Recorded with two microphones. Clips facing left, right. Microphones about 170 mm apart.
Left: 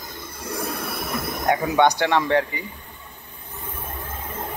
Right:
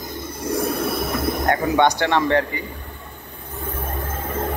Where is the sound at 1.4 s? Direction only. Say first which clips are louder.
Even; 10° left (ahead or behind).